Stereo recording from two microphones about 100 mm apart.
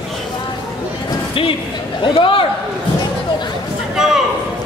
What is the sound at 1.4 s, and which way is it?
A man's voice, 65° left (ahead or behind).